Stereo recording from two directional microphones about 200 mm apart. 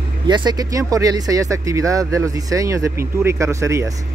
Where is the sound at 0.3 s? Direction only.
20° right (ahead or behind).